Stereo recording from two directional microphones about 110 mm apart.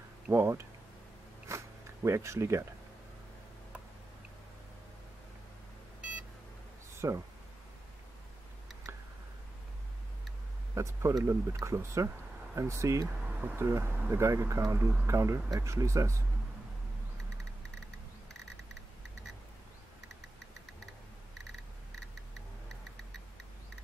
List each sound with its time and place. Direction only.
0.3 s speech: 20° right (ahead or behind)
1.5 s zipper: 25° right (ahead or behind)
7.0 s speech: 30° right (ahead or behind)
10.7 s speech: 25° right (ahead or behind)